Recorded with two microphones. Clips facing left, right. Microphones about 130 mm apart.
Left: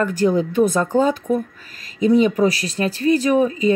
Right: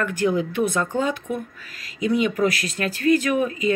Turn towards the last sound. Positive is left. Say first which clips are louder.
# left 5 dB
turn(degrees=30)  # may be behind; listen again after turning